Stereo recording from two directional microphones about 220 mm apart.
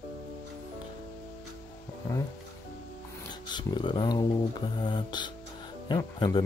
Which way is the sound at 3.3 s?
20° left (ahead or behind).